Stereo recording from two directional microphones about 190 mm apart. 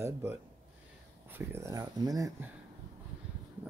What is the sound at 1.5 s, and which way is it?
Speech, 15° right (ahead or behind).